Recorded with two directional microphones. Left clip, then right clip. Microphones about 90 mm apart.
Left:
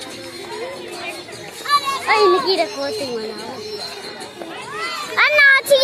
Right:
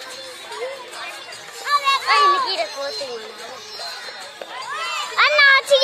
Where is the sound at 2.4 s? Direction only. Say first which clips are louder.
Left 4 dB; 50° left (ahead or behind).